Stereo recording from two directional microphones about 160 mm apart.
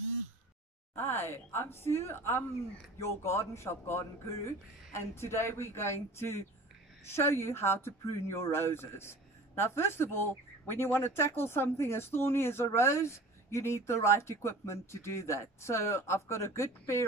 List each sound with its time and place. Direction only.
0.9 s speech: 15° left (ahead or behind)